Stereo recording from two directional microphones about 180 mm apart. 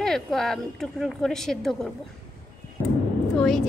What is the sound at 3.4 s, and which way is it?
Speech, centre (ahead or behind).